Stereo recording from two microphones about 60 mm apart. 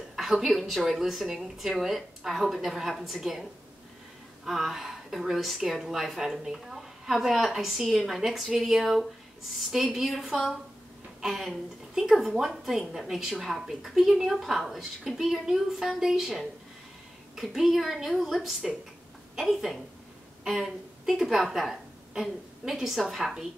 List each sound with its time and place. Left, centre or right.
0.1 s a woman's voice: centre
4.5 s a woman's voice: centre